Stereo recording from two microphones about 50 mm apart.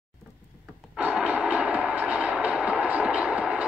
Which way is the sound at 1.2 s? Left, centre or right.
Right.